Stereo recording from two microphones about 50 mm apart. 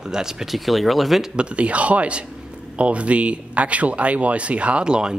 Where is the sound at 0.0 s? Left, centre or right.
Centre.